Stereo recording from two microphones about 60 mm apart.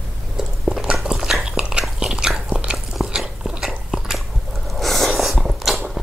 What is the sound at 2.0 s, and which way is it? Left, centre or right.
Biting, centre.